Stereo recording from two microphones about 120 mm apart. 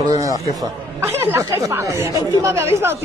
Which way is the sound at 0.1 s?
30° right (ahead or behind).